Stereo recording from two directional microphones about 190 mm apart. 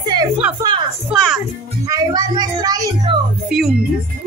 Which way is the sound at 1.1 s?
Centre (ahead or behind).